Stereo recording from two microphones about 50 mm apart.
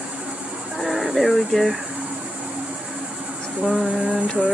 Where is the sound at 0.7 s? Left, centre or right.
Centre.